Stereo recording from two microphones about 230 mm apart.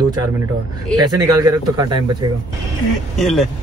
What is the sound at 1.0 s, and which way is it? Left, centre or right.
Speech, centre.